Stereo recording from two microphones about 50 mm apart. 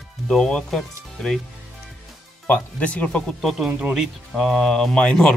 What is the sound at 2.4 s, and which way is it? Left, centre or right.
Speech, left.